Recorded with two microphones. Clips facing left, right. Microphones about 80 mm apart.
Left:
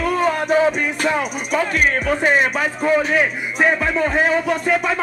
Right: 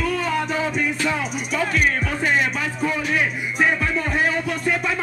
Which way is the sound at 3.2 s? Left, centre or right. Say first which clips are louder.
Left 3 dB; left.